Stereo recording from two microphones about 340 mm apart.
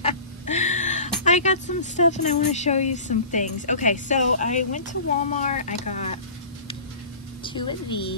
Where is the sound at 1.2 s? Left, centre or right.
Left.